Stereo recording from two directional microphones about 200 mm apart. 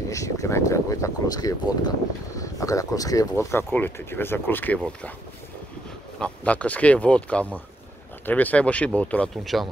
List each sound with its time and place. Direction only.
0.1 s speech: 15° left (ahead or behind)
6.1 s speech: 5° left (ahead or behind)